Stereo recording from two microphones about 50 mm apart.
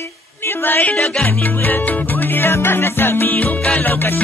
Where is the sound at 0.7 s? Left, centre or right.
Left.